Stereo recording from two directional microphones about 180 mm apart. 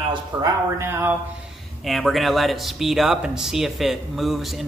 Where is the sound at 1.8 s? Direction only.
Centre (ahead or behind).